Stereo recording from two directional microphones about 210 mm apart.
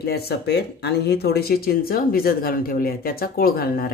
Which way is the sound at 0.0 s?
50° left (ahead or behind).